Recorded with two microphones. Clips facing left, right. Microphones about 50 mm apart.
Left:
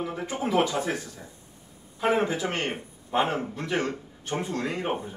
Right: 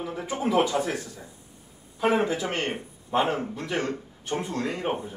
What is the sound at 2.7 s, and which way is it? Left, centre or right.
Speech, centre.